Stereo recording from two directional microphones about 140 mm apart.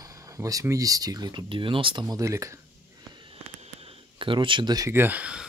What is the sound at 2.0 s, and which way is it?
Speech, 20° right (ahead or behind).